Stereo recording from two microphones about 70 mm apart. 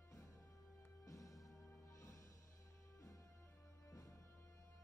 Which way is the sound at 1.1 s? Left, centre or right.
Left.